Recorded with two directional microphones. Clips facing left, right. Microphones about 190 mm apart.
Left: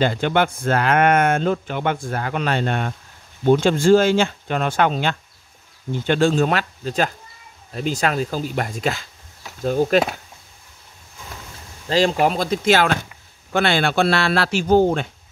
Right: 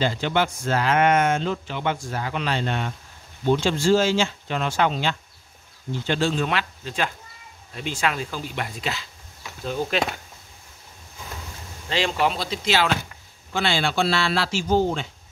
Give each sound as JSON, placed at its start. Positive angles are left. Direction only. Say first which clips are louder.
{"t": 0.0, "sound": "speech", "louder": "left 4 dB", "side_deg": 55}
{"t": 11.9, "sound": "speech", "louder": "left 6 dB", "side_deg": 40}